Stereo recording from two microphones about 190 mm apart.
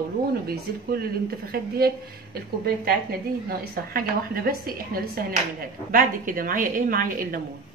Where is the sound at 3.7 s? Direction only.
50° right (ahead or behind).